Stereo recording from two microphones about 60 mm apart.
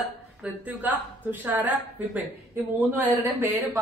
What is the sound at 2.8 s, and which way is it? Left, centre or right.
Speech, right.